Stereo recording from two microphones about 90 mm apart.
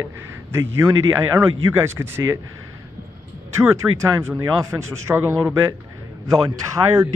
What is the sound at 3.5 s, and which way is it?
Speech, 35° right (ahead or behind).